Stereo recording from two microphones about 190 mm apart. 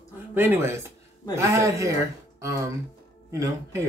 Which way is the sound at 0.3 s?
10° right (ahead or behind).